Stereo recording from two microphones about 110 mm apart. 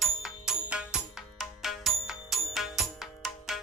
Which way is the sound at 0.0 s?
5° right (ahead or behind).